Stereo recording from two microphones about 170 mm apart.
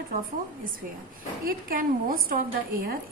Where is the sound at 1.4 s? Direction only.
60° right (ahead or behind).